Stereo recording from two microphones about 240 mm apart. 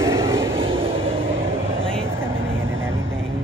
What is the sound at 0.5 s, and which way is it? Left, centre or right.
Train, right.